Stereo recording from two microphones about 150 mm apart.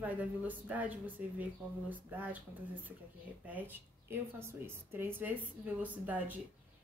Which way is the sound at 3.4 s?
10° right (ahead or behind).